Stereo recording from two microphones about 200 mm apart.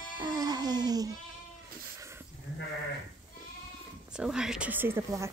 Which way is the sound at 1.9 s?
15° right (ahead or behind).